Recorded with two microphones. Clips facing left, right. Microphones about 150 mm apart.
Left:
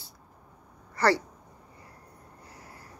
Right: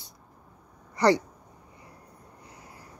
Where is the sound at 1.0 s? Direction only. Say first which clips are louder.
Right 3 dB; 15° right (ahead or behind).